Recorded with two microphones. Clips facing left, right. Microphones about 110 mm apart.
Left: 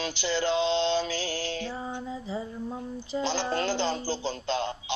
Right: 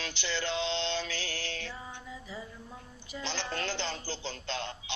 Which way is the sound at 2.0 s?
30° left (ahead or behind).